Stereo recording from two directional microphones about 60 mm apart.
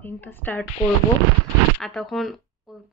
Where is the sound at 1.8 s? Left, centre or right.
Centre.